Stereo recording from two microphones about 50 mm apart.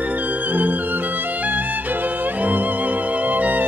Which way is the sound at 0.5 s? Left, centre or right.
Right.